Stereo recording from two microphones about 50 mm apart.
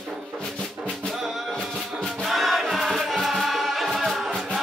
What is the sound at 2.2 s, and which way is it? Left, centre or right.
Music, centre.